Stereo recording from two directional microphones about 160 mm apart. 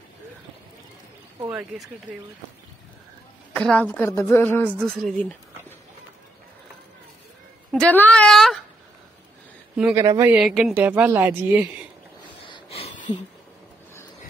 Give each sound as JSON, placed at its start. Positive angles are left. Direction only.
{"t": 1.5, "sound": "speech", "side_deg": -5}
{"t": 3.5, "sound": "a woman's voice", "side_deg": 5}
{"t": 7.7, "sound": "speech", "side_deg": 10}
{"t": 9.9, "sound": "speech", "side_deg": -20}
{"t": 10.3, "sound": "speech", "side_deg": -5}
{"t": 12.4, "sound": "a sound", "side_deg": 35}